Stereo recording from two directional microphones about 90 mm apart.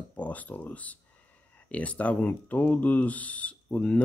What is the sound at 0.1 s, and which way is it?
Speech, 15° left (ahead or behind).